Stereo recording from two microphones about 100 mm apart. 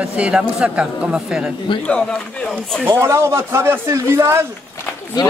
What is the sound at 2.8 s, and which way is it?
Speech, 25° right (ahead or behind).